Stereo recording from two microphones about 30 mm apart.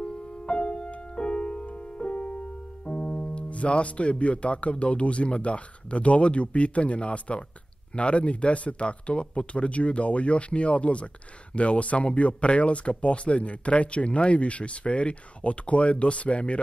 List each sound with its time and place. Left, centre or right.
0.0 s music: left
2.8 s speech: left